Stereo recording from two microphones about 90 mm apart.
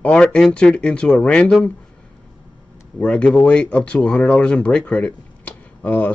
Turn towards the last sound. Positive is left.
turn(degrees=20)  # may be behind; listen again after turning